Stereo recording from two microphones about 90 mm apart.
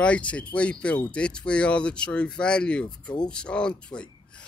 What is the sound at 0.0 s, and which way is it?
Speech, 15° left (ahead or behind).